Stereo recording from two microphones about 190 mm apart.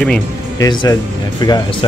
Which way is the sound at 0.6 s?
20° left (ahead or behind).